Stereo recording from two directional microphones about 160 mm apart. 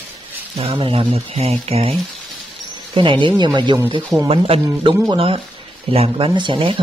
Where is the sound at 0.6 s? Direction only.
35° right (ahead or behind).